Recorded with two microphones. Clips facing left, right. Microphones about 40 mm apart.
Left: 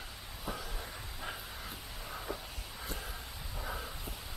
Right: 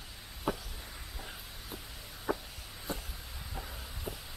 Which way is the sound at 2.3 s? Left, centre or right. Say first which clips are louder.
Right 9 dB; right.